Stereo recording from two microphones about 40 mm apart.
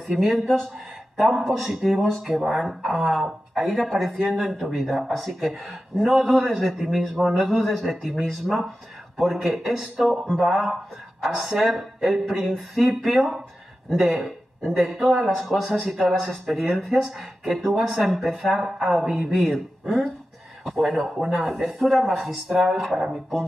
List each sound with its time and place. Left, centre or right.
0.2 s speech: centre
7.6 s speech: centre